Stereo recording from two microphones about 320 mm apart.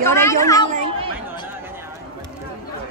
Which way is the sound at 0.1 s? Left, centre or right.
Centre.